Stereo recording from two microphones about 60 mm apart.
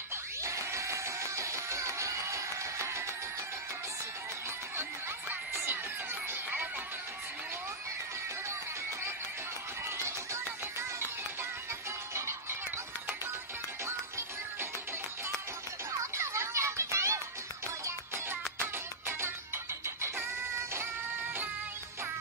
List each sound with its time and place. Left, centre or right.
0.4 s music: right
9.8 s music: right
12.1 s music: right
13.8 s music: right
16.2 s music: right
17.8 s music: right